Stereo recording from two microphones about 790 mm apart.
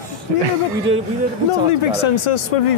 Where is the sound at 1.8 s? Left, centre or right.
Left.